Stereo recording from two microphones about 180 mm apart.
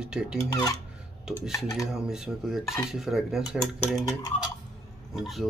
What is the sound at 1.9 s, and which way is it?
Dishes, 5° right (ahead or behind).